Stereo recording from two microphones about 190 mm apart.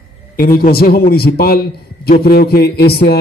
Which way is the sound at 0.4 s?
50° left (ahead or behind).